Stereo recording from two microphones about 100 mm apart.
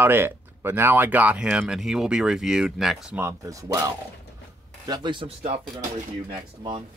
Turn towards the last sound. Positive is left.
turn(degrees=-50)  # may be behind; listen again after turning